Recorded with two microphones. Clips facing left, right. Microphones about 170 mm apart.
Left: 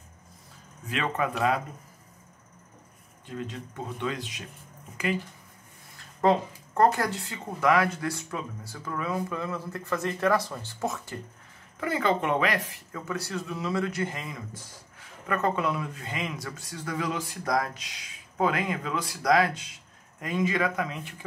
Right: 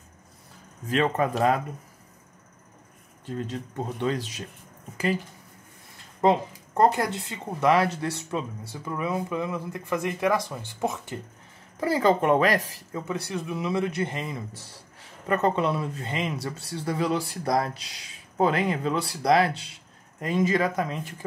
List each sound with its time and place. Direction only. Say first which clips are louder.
0.8 s speech: right 5 dB; 40° right (ahead or behind)
3.3 s speech: right 4 dB; 40° right (ahead or behind)
6.2 s speech: right 1 dB; 20° right (ahead or behind)
11.8 s speech: right 5 dB; 35° right (ahead or behind)
12.9 s a man's voice: right 3 dB; 20° right (ahead or behind); by 21.3 s 40° right (ahead or behind)